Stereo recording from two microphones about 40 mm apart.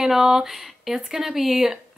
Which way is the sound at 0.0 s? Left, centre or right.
Centre.